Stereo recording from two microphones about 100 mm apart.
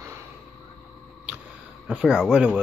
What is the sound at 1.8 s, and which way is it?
Speech, 5° right (ahead or behind).